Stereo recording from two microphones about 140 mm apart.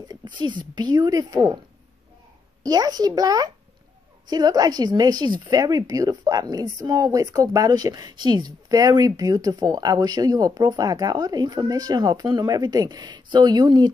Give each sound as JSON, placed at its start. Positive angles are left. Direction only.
{"t": 0.0, "sound": "a woman's voice", "side_deg": -30}
{"t": 2.6, "sound": "a woman's voice", "side_deg": -25}